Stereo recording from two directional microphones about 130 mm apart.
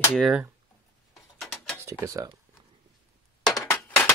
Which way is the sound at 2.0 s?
25° right (ahead or behind).